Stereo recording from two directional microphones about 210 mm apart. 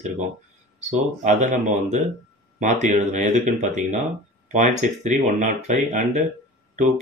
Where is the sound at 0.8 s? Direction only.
35° right (ahead or behind).